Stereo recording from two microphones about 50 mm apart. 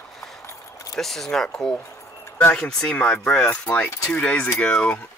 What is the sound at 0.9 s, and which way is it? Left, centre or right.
Speech, centre.